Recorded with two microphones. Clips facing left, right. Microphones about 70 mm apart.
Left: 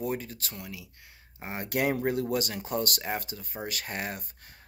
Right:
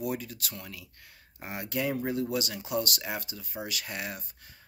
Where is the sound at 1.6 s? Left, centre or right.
Left.